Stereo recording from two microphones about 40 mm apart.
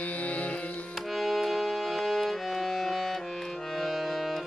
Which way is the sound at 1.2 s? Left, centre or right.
Centre.